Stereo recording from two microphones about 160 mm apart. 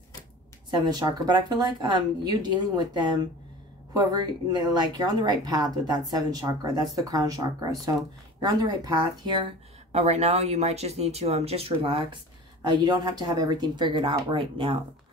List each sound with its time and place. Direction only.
0.7 s speech: 25° right (ahead or behind)
9.9 s speech: 45° right (ahead or behind)